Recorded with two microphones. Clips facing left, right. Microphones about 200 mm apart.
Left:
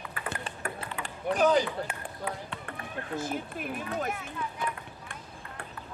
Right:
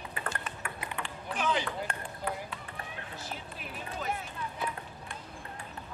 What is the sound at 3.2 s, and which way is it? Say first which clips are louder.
Run: left 10 dB; 50° left (ahead or behind).